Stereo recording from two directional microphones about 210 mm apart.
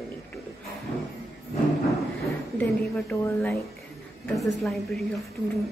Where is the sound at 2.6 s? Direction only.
10° left (ahead or behind).